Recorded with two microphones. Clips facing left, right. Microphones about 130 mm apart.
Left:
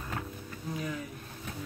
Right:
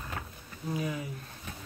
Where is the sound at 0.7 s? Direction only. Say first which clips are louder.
Right 3 dB; 10° right (ahead or behind).